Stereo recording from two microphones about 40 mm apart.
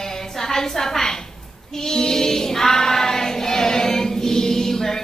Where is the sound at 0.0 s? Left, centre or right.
Centre.